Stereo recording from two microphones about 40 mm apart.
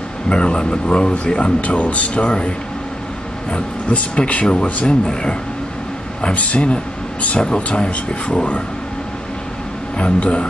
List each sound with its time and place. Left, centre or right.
0.3 s speech: left
3.9 s speech: left
6.3 s speech: left
9.9 s speech: left